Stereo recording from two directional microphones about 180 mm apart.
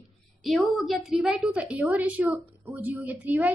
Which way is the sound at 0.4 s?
Centre (ahead or behind).